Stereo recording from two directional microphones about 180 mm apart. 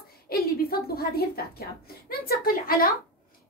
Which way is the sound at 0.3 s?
55° left (ahead or behind).